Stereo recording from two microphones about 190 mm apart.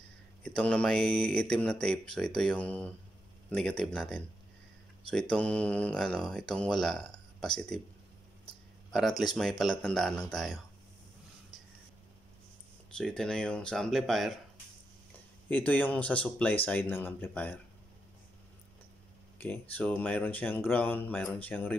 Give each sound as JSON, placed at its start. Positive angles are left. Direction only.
{"t": 0.6, "sound": "speech", "side_deg": 5}
{"t": 5.3, "sound": "speech", "side_deg": 5}
{"t": 9.2, "sound": "speech", "side_deg": 0}
{"t": 12.9, "sound": "speech", "side_deg": 5}
{"t": 15.5, "sound": "speech", "side_deg": 10}
{"t": 19.3, "sound": "speech", "side_deg": 10}